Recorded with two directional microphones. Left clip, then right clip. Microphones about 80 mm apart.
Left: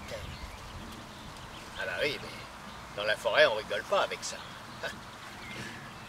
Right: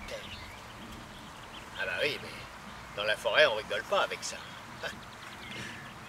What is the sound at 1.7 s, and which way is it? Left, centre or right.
Speech, right.